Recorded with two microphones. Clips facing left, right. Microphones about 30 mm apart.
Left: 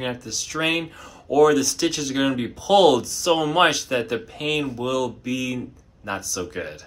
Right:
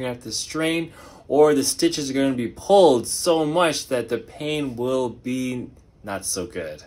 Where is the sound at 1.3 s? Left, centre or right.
Left.